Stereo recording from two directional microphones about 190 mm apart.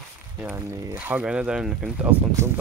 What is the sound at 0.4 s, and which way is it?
Speech, 10° right (ahead or behind).